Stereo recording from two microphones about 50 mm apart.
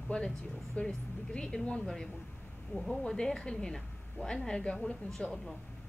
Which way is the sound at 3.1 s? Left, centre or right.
Centre.